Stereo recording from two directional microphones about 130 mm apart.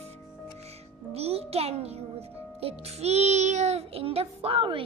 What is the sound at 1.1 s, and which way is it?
Music, 50° right (ahead or behind).